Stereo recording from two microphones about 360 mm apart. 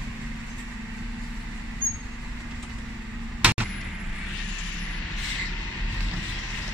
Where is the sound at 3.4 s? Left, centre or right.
Centre.